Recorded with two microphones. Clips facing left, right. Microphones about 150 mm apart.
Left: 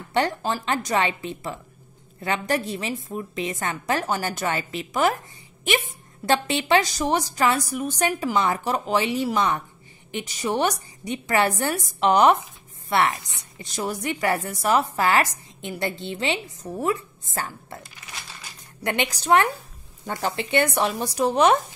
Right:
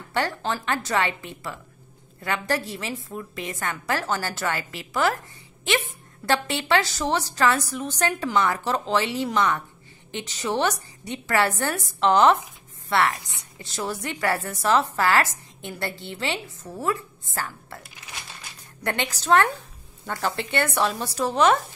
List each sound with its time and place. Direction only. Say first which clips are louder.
0.1 s a woman's voice: left 3 dB; 15° left (ahead or behind)
6.2 s a woman's voice: left 2 dB; 20° left (ahead or behind)
18.8 s a woman's voice: left 2 dB; 15° left (ahead or behind)